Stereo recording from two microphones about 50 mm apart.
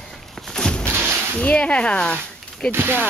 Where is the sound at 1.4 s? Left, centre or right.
Left.